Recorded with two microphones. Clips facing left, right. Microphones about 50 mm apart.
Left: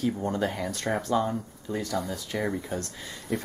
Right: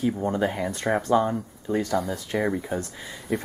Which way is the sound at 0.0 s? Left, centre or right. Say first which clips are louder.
Right 3 dB; centre.